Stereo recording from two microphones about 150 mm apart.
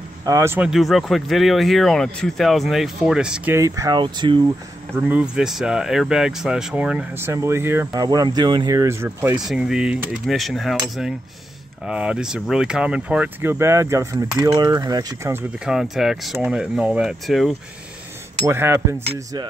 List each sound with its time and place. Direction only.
0.2 s speech: 20° right (ahead or behind)
0.7 s speech: centre (ahead or behind)
3.5 s speech: 20° right (ahead or behind)
4.9 s speech: 10° right (ahead or behind)
7.2 s speech: 15° right (ahead or behind)
9.4 s speech: 5° right (ahead or behind); by 15.4 s 20° right (ahead or behind)
15.6 s speech: 5° right (ahead or behind)
18.5 s speech: 15° right (ahead or behind)